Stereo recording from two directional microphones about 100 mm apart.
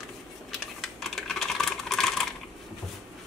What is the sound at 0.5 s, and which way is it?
Computer keyboard, centre (ahead or behind).